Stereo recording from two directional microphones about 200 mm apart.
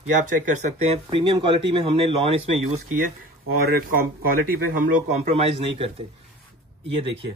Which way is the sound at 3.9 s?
45° right (ahead or behind).